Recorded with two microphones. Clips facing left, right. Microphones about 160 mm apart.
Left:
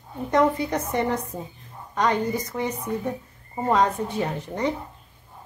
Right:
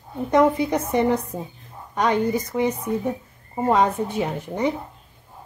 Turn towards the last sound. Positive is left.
turn(degrees=-10)  # may be behind; listen again after turning